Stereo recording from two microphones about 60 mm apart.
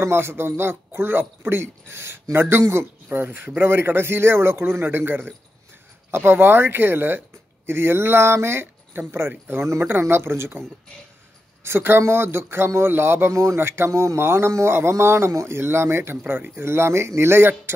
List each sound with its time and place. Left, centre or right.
0.0 s speech: right
11.6 s speech: right
13.3 s speech: right
13.6 s speech: right